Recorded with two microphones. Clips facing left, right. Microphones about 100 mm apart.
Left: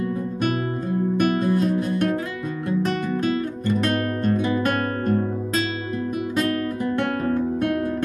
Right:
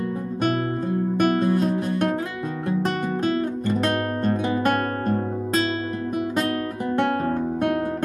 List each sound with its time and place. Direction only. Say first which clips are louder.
3.8 s music: even; 35° right (ahead or behind)
7.0 s music: right 2 dB; 35° right (ahead or behind)